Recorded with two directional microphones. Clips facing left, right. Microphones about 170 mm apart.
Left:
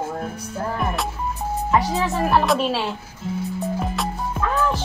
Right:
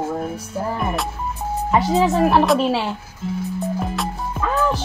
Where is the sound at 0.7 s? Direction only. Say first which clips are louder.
Even; centre (ahead or behind).